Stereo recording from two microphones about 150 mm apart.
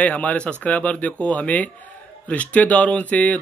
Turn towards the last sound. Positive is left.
turn(degrees=10)  # may be behind; listen again after turning